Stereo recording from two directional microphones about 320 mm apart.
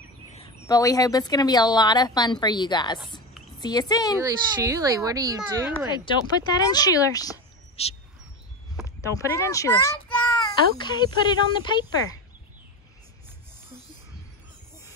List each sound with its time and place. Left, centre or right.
0.3 s speech: centre
4.2 s speech: centre
5.9 s speech: centre
8.7 s a sound: centre
10.8 s speech: centre